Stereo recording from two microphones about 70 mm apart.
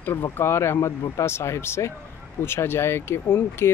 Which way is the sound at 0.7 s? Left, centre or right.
Left.